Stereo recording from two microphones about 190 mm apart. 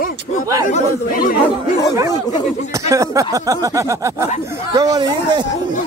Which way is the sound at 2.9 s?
15° right (ahead or behind).